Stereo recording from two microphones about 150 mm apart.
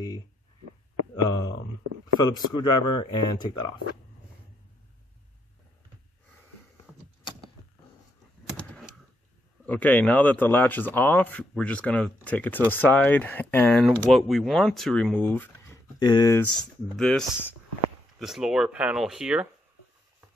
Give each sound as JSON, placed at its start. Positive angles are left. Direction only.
{"t": 1.1, "sound": "speech", "side_deg": 25}
{"t": 8.5, "sound": "typing", "side_deg": 5}
{"t": 9.7, "sound": "speech", "side_deg": 10}
{"t": 14.1, "sound": "speech", "side_deg": 0}
{"t": 16.5, "sound": "speech", "side_deg": 5}
{"t": 18.2, "sound": "speech", "side_deg": -5}